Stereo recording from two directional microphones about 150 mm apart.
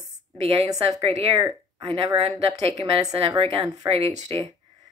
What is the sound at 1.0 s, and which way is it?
Speech, 40° right (ahead or behind).